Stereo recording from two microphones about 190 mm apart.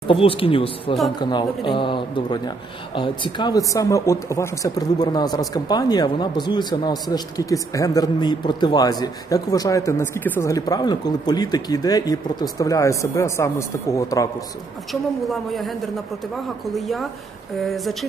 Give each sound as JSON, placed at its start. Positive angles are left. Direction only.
{"t": 0.1, "sound": "speech", "side_deg": 30}
{"t": 14.9, "sound": "a woman's voice", "side_deg": 0}
{"t": 16.7, "sound": "a woman's voice", "side_deg": 0}